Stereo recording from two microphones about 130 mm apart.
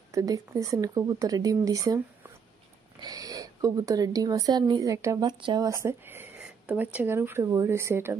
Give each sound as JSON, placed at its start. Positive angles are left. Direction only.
{"t": 0.1, "sound": "speech", "side_deg": -25}
{"t": 3.0, "sound": "speech", "side_deg": -30}